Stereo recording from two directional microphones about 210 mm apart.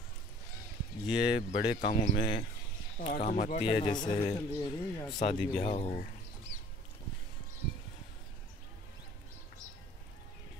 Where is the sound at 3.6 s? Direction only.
25° left (ahead or behind).